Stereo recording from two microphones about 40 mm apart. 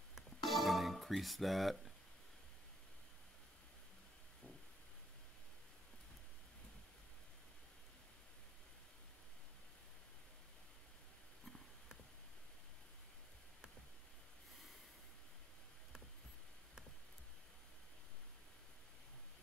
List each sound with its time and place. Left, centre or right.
0.1 s music: centre